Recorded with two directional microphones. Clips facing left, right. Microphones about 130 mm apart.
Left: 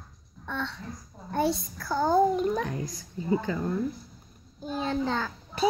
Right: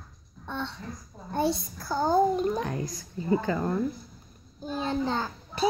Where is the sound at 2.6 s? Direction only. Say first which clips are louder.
Right 1 dB; 55° right (ahead or behind).